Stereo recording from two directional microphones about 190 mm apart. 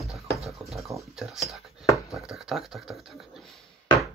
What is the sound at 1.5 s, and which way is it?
Chopping, centre (ahead or behind).